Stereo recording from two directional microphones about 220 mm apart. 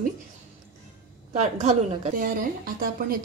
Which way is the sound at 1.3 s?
30° right (ahead or behind).